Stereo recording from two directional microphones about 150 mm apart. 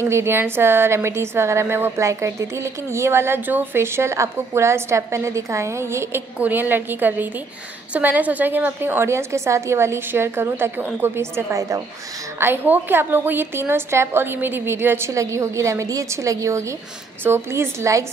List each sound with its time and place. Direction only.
0.0 s a woman's voice: 15° right (ahead or behind)